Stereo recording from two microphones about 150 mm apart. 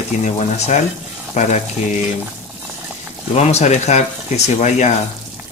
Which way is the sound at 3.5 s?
50° left (ahead or behind).